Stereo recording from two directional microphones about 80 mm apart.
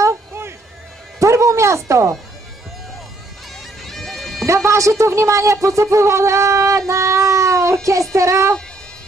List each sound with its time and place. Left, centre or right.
0.0 s a sound: right
3.8 s bagpipes: centre
4.5 s speech: right